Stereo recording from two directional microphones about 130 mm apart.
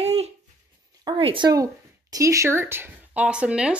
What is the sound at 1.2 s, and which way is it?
Speech, 40° right (ahead or behind).